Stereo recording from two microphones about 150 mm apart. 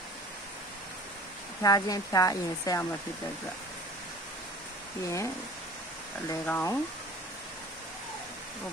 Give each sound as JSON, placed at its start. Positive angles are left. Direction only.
{"t": 1.6, "sound": "speech", "side_deg": 25}
{"t": 5.0, "sound": "speech", "side_deg": 20}
{"t": 6.4, "sound": "speech", "side_deg": 15}